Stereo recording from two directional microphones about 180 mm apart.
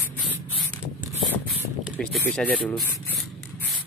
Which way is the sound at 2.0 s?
5° left (ahead or behind).